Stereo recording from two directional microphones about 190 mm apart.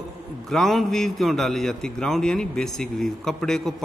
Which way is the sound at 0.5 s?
Centre (ahead or behind).